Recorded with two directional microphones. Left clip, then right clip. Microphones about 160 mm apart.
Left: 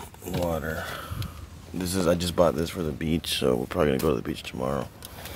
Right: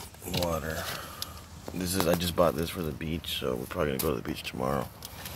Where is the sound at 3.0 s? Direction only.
25° left (ahead or behind).